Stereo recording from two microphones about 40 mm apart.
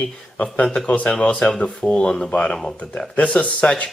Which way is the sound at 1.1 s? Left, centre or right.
Left.